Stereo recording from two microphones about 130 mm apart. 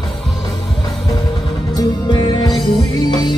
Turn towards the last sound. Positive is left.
turn(degrees=35)  # may be behind; listen again after turning